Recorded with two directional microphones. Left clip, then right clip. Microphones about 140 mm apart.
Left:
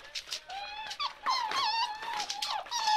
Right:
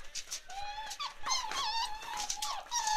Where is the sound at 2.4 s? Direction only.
20° right (ahead or behind).